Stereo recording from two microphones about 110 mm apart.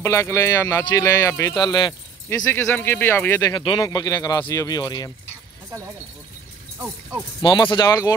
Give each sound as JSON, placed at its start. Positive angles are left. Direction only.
{"t": 0.0, "sound": "speech", "side_deg": 25}
{"t": 1.5, "sound": "speech", "side_deg": 40}
{"t": 2.2, "sound": "speech", "side_deg": 20}
{"t": 3.4, "sound": "speech", "side_deg": 45}
{"t": 6.8, "sound": "speech", "side_deg": -25}
{"t": 7.4, "sound": "speech", "side_deg": 45}